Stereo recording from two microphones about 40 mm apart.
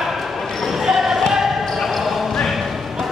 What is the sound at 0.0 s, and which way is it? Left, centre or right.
Basketball bounce, centre.